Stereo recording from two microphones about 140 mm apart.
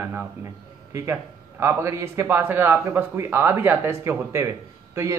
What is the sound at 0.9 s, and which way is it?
A man's voice, 15° right (ahead or behind).